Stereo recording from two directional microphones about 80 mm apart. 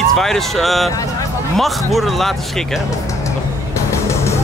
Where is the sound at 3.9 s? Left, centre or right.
Left.